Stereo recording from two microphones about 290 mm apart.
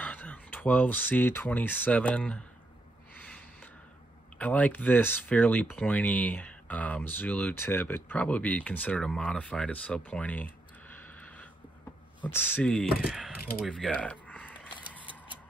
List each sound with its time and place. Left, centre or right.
0.0 s speech: centre
3.2 s a sound: centre
4.4 s speech: centre